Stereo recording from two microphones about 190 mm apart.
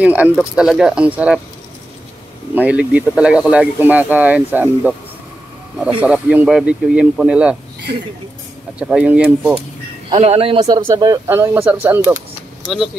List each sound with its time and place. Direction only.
0.0 s speech: 10° right (ahead or behind)
2.5 s speech: 5° right (ahead or behind)
5.9 s speech: 5° right (ahead or behind)
8.7 s speech: 5° right (ahead or behind)
10.0 s speech: 30° right (ahead or behind)
10.9 s speech: 15° right (ahead or behind)